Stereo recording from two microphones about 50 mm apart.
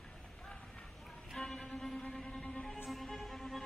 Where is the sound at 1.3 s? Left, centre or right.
Centre.